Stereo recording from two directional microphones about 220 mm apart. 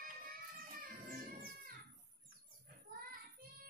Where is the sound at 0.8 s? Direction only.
40° right (ahead or behind).